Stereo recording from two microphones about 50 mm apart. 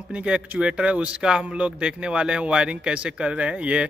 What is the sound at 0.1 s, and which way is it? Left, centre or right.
A man's voice, right.